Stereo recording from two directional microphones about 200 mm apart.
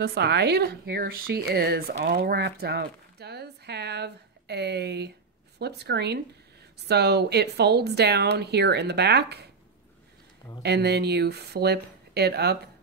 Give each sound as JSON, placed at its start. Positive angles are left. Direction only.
{"t": 0.0, "sound": "speech", "side_deg": -55}
{"t": 10.6, "sound": "speech", "side_deg": -55}